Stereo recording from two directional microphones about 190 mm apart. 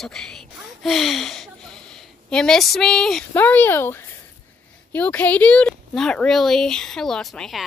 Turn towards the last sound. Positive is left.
turn(degrees=0)  # may be behind; listen again after turning